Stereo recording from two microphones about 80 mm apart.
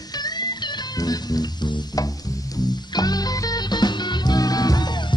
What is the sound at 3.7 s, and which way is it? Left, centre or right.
Music, left.